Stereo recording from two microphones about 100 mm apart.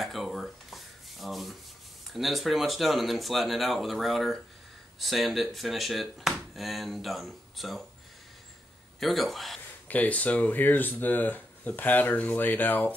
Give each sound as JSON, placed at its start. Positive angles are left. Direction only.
{"t": 0.0, "sound": "rub", "side_deg": 0}
{"t": 2.1, "sound": "speech", "side_deg": 0}
{"t": 9.0, "sound": "speech", "side_deg": 0}
{"t": 9.8, "sound": "speech", "side_deg": 15}